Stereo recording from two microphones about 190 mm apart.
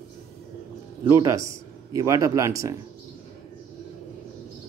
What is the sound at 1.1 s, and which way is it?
Speech, 15° right (ahead or behind).